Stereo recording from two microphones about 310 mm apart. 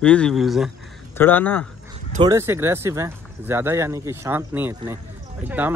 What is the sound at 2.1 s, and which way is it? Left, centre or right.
Speech, centre.